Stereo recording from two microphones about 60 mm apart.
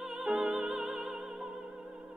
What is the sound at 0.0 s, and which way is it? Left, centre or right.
Music, centre.